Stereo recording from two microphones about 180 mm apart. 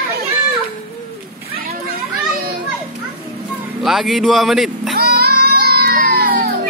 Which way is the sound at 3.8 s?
Centre (ahead or behind).